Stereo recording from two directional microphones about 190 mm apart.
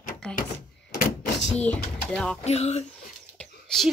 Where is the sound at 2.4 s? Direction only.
35° left (ahead or behind).